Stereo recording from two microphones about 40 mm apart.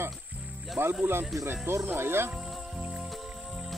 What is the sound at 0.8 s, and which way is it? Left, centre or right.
Speech, right.